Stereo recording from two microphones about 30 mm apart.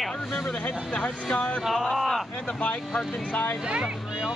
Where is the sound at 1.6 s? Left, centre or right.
Centre.